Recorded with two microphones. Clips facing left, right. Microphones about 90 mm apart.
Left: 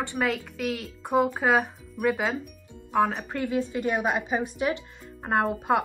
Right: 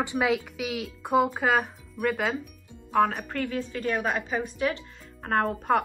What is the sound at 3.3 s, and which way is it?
Speech, 20° left (ahead or behind).